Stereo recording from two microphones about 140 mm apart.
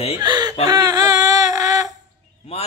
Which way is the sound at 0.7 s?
25° right (ahead or behind).